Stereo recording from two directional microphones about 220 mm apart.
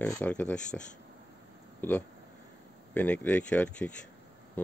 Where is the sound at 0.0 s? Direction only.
5° left (ahead or behind).